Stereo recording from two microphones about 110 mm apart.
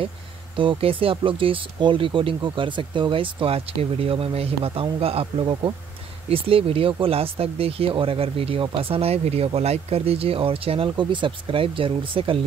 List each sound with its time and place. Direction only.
0.6 s speech: 55° right (ahead or behind)